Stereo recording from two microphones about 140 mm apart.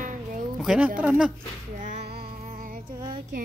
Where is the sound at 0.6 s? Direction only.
10° right (ahead or behind).